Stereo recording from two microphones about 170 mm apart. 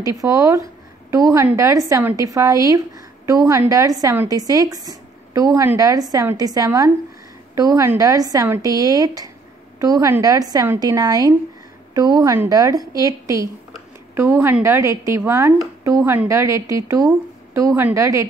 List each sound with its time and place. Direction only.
0.0 s speech: 20° right (ahead or behind)